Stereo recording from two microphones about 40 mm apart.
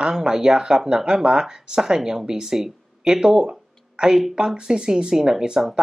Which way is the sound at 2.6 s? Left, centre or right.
Centre.